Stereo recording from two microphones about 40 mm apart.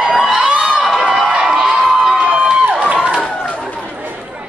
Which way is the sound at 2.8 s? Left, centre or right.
Right.